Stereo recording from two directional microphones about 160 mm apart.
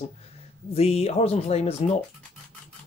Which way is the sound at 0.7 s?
40° left (ahead or behind).